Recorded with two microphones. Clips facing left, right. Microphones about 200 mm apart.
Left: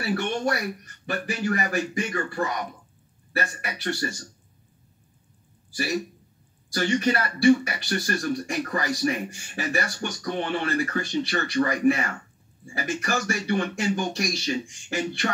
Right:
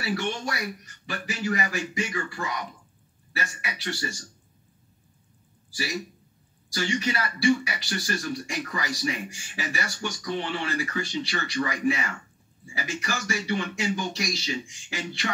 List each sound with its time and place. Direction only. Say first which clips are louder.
0.0 s a man's voice: left 4 dB; 55° left (ahead or behind)
6.7 s speech: left 5 dB; 55° left (ahead or behind)